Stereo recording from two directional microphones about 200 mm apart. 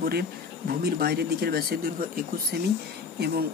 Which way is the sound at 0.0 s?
50° right (ahead or behind).